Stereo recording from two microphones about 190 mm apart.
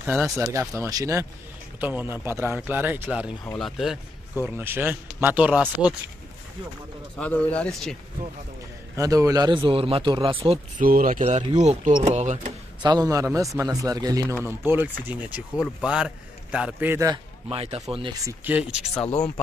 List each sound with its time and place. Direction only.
0.0 s a man's voice: 10° right (ahead or behind)
7.2 s a man's voice: 5° left (ahead or behind)
8.9 s speech: 15° right (ahead or behind)
10.8 s speech: 45° right (ahead or behind)
12.8 s a man's voice: 20° right (ahead or behind)
17.5 s speech: 30° right (ahead or behind)
18.4 s a man's voice: 5° right (ahead or behind)